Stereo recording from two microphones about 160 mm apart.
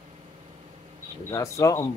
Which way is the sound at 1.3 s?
20° left (ahead or behind).